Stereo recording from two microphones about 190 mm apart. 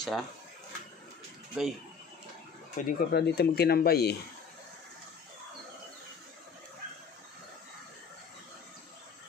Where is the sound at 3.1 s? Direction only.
60° left (ahead or behind).